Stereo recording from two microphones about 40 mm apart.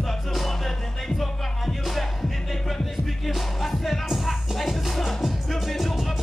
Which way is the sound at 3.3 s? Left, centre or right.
Centre.